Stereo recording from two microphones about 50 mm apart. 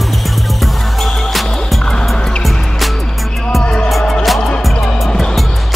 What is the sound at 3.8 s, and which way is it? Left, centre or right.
Music, centre.